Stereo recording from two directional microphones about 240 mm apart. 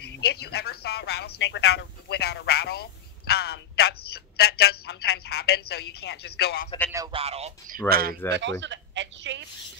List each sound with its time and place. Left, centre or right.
0.0 s speech: left
6.9 s speech: centre; by 8.2 s right
8.3 s speech: right